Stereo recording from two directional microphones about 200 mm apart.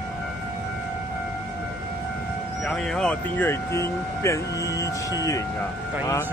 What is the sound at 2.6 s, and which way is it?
Speech, centre (ahead or behind).